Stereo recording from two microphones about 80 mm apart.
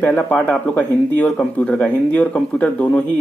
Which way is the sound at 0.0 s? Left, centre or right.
Centre.